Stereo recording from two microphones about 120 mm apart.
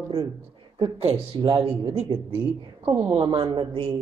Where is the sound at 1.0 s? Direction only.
55° right (ahead or behind).